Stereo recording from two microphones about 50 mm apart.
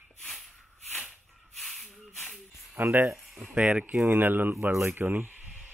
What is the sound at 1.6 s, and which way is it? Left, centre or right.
Hiss, centre.